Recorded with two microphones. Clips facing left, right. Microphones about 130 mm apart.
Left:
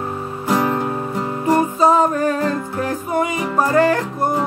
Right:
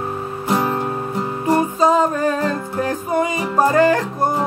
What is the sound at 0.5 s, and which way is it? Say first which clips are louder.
Music: left 1 dB; 10° right (ahead or behind).